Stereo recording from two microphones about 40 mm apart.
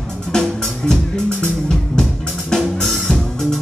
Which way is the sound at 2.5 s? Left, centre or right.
Centre.